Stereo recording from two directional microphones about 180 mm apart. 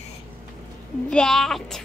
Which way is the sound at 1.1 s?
Centre (ahead or behind).